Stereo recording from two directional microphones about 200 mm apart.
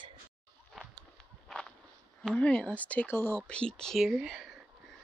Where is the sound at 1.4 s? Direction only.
5° left (ahead or behind).